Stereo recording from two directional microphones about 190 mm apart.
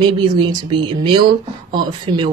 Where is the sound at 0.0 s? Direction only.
25° right (ahead or behind).